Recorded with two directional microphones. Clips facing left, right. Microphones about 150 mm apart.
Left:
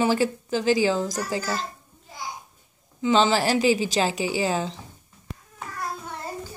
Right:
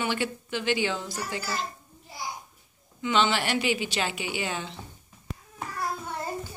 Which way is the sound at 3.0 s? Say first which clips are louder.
Left 5 dB; 35° left (ahead or behind).